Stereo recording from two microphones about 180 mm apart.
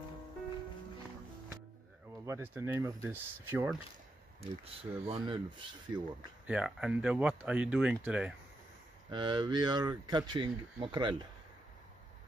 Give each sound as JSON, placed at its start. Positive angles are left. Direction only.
{"t": 2.2, "sound": "speech", "side_deg": -15}
{"t": 5.0, "sound": "speech", "side_deg": -35}
{"t": 6.4, "sound": "speech", "side_deg": -5}
{"t": 9.1, "sound": "speech", "side_deg": -25}